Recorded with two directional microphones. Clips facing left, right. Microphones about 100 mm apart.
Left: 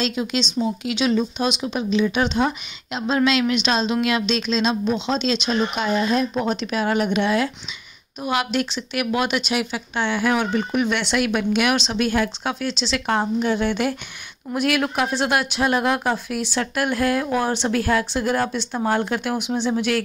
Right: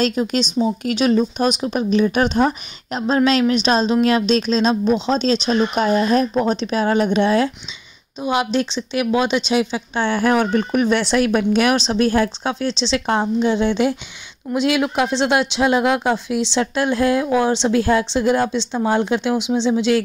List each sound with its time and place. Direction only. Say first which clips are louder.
0.0 s speech: right 4 dB; 45° right (ahead or behind)
6.5 s speech: right 4 dB; 35° right (ahead or behind)